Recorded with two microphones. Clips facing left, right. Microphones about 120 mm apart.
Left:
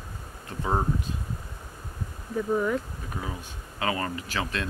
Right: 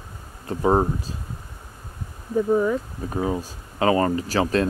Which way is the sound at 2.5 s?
15° right (ahead or behind).